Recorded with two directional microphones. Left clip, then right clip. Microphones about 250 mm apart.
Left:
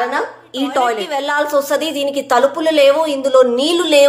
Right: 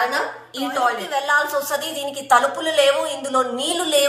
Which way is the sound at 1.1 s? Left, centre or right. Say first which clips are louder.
Left 3 dB; left.